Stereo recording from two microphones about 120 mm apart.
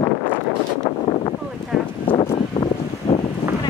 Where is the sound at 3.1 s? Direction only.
45° left (ahead or behind).